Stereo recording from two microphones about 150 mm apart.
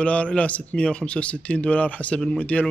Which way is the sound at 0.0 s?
10° left (ahead or behind).